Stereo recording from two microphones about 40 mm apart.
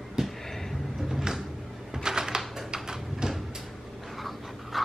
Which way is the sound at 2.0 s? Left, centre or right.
Centre.